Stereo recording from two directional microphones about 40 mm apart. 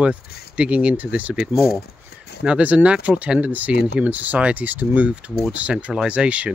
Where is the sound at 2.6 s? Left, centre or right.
Right.